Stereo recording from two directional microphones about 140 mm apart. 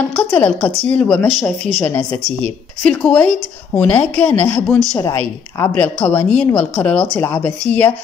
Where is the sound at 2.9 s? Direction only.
10° left (ahead or behind).